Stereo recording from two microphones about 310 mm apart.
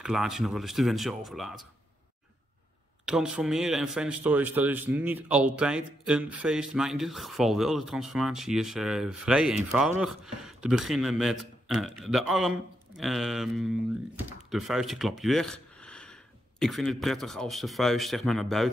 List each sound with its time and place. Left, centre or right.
0.0 s speech: centre
3.1 s speech: centre